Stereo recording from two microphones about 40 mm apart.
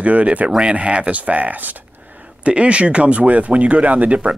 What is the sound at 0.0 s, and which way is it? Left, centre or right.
Speech, right.